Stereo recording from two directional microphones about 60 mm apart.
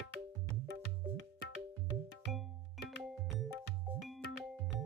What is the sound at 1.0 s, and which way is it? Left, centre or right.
Music, right.